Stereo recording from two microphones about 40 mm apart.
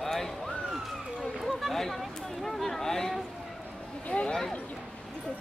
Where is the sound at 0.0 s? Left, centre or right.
Centre.